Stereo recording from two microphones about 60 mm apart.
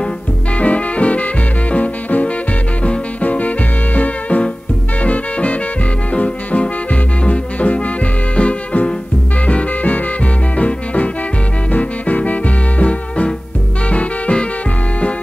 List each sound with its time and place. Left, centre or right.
0.6 s music: left